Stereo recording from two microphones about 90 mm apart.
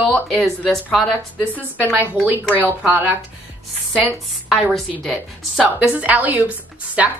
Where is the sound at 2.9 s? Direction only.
20° right (ahead or behind).